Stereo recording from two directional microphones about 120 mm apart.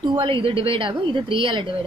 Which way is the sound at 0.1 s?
45° right (ahead or behind).